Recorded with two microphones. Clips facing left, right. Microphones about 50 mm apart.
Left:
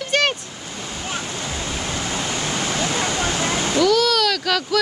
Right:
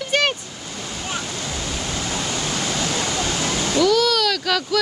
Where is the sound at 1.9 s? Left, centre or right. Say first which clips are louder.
Even; centre.